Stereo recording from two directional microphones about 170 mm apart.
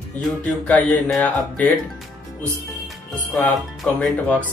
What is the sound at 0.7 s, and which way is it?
Speech, 10° left (ahead or behind).